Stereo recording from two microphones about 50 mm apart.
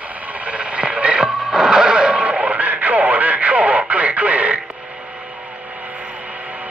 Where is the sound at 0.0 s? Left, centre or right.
Right.